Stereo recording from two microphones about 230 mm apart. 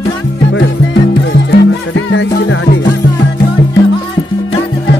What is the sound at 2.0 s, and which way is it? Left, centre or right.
Music, left.